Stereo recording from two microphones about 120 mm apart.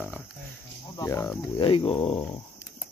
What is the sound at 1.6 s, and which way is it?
Speech, 45° left (ahead or behind).